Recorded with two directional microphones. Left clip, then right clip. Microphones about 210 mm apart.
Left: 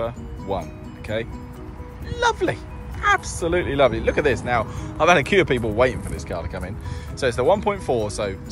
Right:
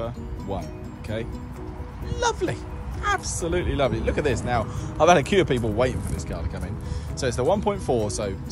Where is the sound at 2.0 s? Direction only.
10° right (ahead or behind).